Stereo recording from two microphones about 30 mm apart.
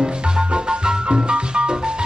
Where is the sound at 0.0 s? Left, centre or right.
Right.